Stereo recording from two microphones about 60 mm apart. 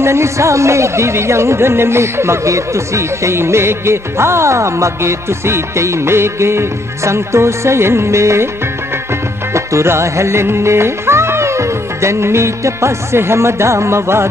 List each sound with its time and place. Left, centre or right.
0.0 s speech: right
9.5 s music: right